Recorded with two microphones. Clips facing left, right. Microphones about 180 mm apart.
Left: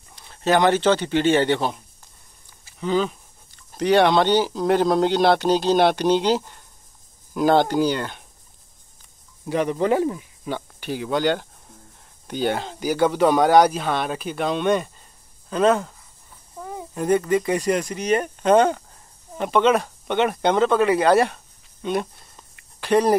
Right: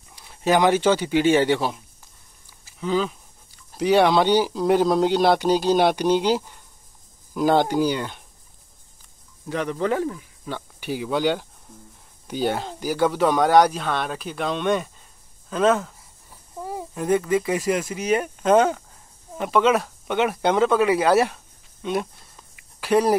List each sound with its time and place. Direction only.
0.1 s speech: 10° right (ahead or behind)
9.5 s speech: 15° left (ahead or behind)
10.8 s speech: 5° right (ahead or behind)
22.6 s cricket: 5° right (ahead or behind)